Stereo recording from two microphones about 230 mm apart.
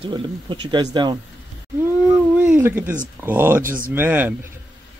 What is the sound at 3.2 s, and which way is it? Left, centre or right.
Speech, centre.